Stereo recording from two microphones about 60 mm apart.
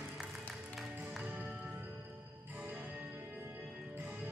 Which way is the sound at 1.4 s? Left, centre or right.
Centre.